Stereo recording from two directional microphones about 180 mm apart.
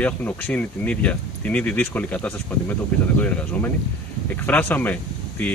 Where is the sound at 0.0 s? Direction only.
10° left (ahead or behind).